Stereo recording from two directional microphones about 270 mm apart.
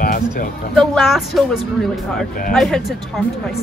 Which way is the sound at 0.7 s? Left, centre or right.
Centre.